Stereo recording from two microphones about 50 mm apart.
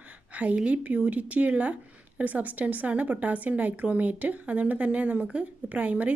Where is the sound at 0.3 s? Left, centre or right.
Right.